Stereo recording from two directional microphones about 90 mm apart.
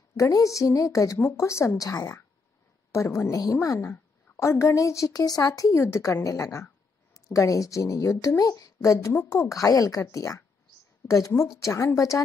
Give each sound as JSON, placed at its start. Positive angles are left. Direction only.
{"t": 0.2, "sound": "a woman's voice", "side_deg": 40}